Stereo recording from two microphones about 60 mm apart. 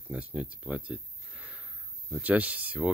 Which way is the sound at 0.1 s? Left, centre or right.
Right.